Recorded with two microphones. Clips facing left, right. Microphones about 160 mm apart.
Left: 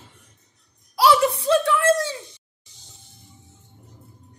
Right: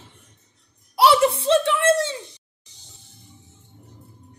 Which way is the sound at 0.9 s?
25° right (ahead or behind).